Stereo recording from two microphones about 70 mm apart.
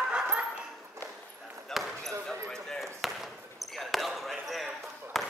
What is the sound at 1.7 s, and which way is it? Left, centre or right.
Basketball bounce, centre.